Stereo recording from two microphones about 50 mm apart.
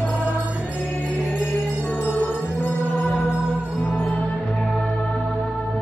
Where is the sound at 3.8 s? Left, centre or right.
Left.